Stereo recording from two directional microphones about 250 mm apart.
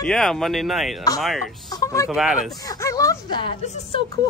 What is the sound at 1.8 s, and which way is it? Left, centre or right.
Speech, centre.